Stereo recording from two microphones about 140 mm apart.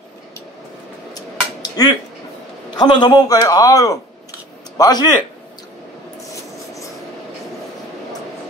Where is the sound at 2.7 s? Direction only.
30° left (ahead or behind).